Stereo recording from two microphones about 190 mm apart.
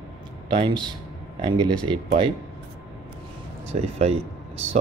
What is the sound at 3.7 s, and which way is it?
Speech, 35° right (ahead or behind).